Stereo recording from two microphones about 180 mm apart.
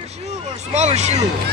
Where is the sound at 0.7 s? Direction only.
40° right (ahead or behind).